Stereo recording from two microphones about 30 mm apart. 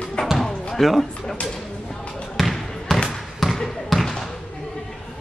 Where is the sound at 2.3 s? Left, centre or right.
Centre.